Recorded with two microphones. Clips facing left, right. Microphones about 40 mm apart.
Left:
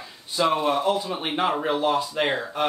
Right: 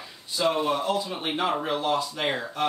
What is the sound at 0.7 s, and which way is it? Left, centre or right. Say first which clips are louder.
Speech: left 3 dB; left.